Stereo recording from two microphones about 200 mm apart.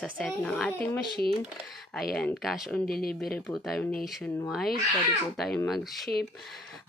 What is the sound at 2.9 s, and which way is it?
Speech, 50° left (ahead or behind).